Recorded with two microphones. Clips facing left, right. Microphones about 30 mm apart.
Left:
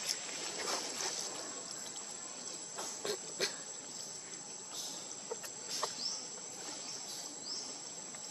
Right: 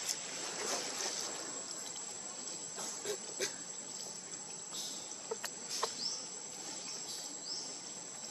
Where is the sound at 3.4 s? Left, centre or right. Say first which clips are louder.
Left 3 dB; left.